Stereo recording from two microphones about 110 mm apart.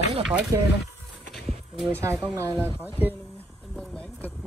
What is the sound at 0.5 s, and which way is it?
Speech, 30° right (ahead or behind).